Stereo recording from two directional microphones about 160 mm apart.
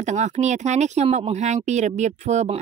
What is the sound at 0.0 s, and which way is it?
Speech, 45° right (ahead or behind).